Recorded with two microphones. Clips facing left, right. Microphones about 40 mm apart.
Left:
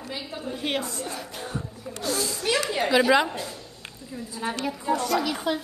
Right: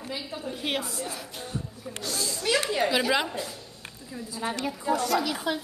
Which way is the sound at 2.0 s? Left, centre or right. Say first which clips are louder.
Left 3 dB; left.